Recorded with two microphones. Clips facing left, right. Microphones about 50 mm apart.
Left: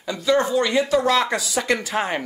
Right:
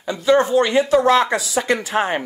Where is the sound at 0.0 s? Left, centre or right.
Right.